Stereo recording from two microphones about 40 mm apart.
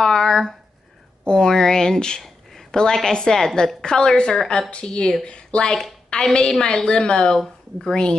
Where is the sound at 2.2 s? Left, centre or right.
Centre.